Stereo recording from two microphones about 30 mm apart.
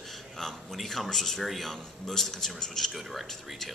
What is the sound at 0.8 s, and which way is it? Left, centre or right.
Speech, centre.